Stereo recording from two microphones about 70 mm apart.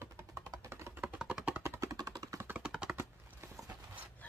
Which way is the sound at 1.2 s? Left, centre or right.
Centre.